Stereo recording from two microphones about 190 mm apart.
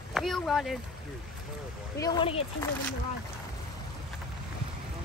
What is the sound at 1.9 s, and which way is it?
Speech, 20° left (ahead or behind).